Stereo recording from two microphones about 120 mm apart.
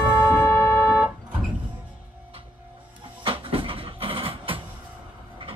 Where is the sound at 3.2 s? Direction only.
45° right (ahead or behind).